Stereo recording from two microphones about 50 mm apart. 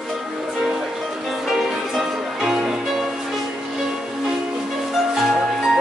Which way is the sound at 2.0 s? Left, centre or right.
Centre.